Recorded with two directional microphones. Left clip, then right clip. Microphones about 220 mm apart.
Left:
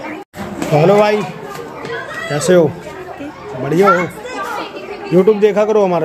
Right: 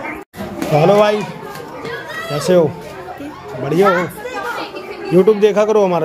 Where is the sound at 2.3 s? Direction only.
10° left (ahead or behind).